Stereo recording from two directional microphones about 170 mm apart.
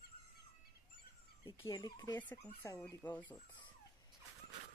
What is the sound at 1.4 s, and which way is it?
Speech, 20° left (ahead or behind).